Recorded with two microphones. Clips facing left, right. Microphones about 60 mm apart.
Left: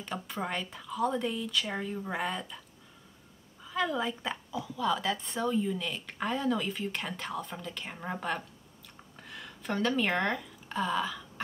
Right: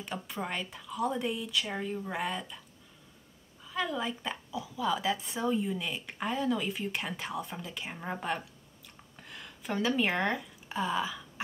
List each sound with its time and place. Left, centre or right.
0.0 s a woman's voice: centre
3.6 s a woman's voice: centre